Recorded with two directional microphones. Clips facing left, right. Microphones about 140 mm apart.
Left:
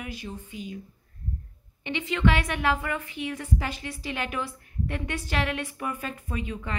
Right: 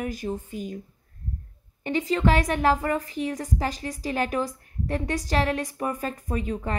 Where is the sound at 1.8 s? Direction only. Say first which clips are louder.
Right 3 dB; 40° right (ahead or behind).